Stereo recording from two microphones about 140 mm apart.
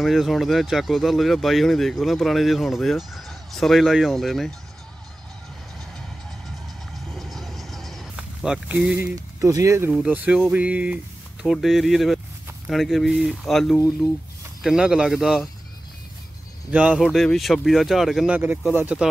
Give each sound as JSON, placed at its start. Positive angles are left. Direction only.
{"t": 0.0, "sound": "speech", "side_deg": 0}
{"t": 6.9, "sound": "vehicle", "side_deg": 0}
{"t": 8.2, "sound": "a sound", "side_deg": -5}
{"t": 8.7, "sound": "speech", "side_deg": -15}
{"t": 9.8, "sound": "speech", "side_deg": -5}
{"t": 16.7, "sound": "speech", "side_deg": -5}